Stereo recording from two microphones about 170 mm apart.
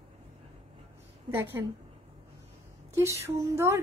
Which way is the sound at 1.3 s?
15° right (ahead or behind).